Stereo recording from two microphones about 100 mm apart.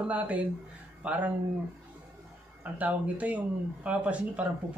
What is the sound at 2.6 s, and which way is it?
Speech, 15° right (ahead or behind).